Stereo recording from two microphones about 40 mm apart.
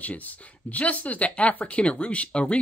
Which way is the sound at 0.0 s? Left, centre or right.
Left.